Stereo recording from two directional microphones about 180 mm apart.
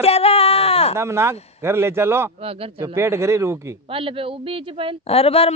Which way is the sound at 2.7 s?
15° right (ahead or behind).